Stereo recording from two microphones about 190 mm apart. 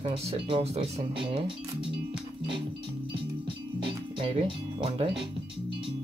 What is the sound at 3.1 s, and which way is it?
Music, 25° right (ahead or behind).